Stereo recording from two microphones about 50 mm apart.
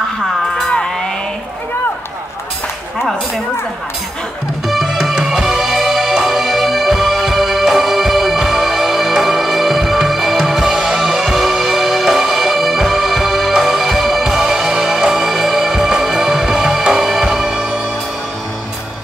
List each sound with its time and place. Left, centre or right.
0.7 s music: centre
4.6 s music: centre